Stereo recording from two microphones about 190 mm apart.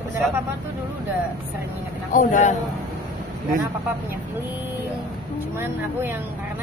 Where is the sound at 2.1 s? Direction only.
40° left (ahead or behind).